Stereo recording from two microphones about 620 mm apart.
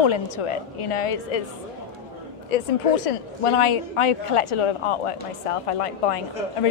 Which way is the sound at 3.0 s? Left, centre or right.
Left.